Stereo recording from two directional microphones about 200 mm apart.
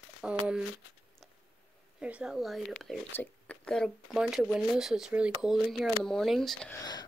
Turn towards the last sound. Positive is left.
turn(degrees=20)  # may be behind; listen again after turning